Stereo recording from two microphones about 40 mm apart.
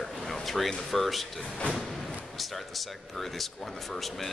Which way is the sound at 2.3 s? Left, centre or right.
Centre.